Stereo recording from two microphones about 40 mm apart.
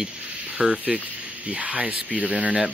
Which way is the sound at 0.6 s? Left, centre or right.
Centre.